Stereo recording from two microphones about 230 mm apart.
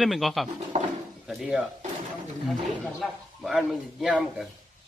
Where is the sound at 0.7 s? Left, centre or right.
Right.